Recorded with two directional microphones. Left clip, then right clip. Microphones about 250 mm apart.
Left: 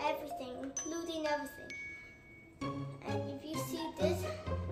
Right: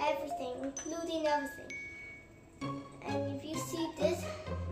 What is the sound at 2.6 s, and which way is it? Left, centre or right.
Music, centre.